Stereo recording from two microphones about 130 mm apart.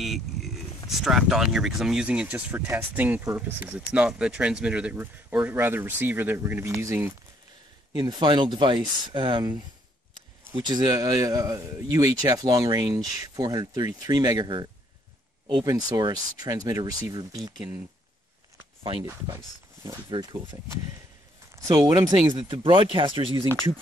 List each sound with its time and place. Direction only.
0.0 s a sound: centre (ahead or behind)
0.8 s speech: centre (ahead or behind); by 7.2 s 20° right (ahead or behind)
7.9 s a man's voice: 35° right (ahead or behind)
20.1 s speech: 35° right (ahead or behind)
21.6 s speech: 30° right (ahead or behind)